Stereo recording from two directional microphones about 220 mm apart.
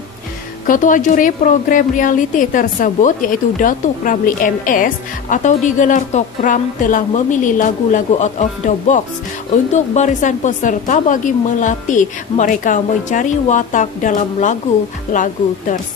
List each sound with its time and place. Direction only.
0.7 s a woman's voice: 35° left (ahead or behind)